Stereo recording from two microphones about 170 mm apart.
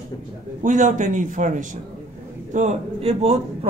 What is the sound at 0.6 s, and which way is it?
A man's voice, 50° right (ahead or behind).